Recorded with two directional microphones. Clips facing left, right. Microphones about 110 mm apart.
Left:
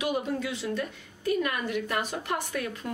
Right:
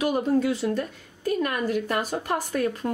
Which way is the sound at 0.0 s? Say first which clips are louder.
Right 7 dB; 45° right (ahead or behind).